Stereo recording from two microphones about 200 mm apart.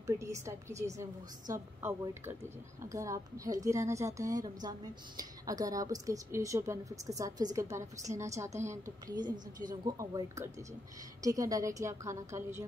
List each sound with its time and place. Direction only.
0.0 s a woman's voice: 15° right (ahead or behind)